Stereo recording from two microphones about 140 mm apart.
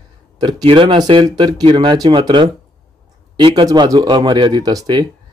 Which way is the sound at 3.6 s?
30° right (ahead or behind).